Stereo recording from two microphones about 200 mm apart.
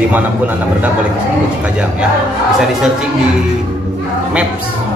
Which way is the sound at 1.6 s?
5° right (ahead or behind).